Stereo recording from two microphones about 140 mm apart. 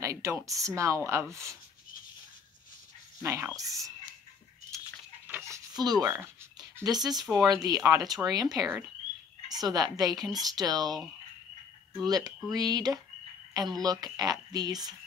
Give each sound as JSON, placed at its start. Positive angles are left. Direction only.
{"t": 0.0, "sound": "speech", "side_deg": -20}
{"t": 3.2, "sound": "speech", "side_deg": -20}
{"t": 5.5, "sound": "speech", "side_deg": -30}
{"t": 12.1, "sound": "speech", "side_deg": -25}